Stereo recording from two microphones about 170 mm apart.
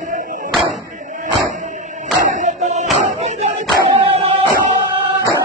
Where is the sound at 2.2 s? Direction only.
45° right (ahead or behind).